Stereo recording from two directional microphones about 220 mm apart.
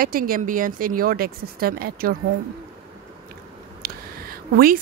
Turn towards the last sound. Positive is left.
turn(degrees=-40)  # may be behind; listen again after turning